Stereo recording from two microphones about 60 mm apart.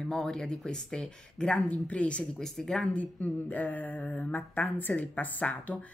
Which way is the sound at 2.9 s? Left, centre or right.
Left.